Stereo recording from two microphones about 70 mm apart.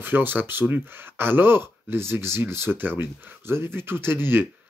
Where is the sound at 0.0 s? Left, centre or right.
Right.